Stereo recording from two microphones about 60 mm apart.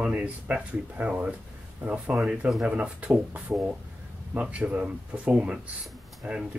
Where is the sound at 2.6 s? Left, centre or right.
Centre.